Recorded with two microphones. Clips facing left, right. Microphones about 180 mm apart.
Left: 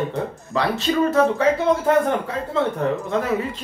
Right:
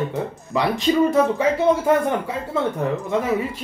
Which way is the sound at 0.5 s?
15° right (ahead or behind).